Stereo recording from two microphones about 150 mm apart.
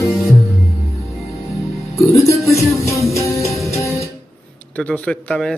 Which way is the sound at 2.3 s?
20° left (ahead or behind).